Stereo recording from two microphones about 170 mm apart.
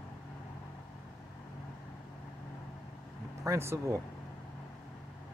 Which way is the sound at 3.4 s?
15° right (ahead or behind).